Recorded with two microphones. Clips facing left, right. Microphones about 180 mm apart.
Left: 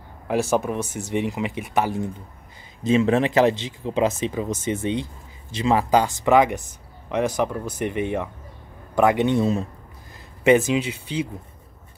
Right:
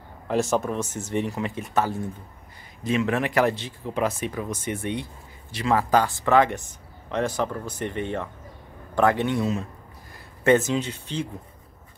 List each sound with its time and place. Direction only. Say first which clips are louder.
0.3 s speech: left 2 dB; 10° left (ahead or behind)
2.8 s speech: left 5 dB; 25° left (ahead or behind)
10.4 s speech: left 3 dB; 10° left (ahead or behind)